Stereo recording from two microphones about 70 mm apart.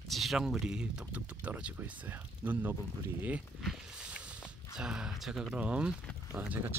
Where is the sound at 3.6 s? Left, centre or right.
Centre.